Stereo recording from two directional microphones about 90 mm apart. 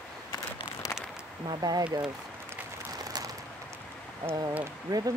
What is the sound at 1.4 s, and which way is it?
Speech, 45° right (ahead or behind).